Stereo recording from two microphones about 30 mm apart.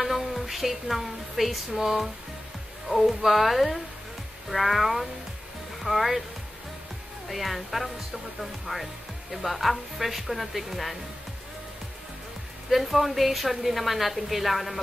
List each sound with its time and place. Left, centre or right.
0.0 s a woman's voice: centre
2.9 s a woman's voice: centre
7.2 s a woman's voice: centre
12.6 s a woman's voice: centre